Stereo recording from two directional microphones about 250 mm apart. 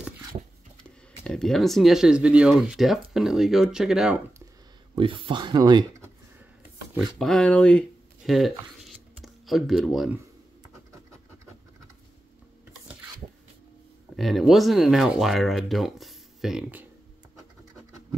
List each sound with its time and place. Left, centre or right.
0.8 s speech: centre
4.9 s speech: right
7.2 s speech: centre
8.3 s a sound: centre
10.7 s scratch: centre
14.1 s speech: centre